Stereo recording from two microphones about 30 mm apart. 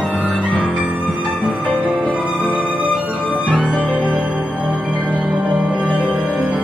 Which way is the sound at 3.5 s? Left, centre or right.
Left.